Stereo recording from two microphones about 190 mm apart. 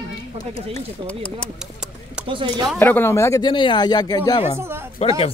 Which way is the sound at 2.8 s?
10° left (ahead or behind).